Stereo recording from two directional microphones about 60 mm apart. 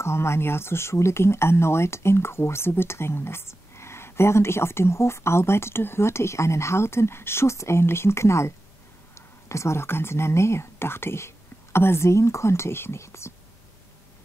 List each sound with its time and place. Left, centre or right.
0.0 s speech: left